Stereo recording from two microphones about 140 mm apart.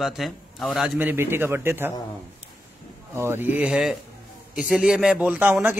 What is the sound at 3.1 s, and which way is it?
A man's voice, 15° right (ahead or behind).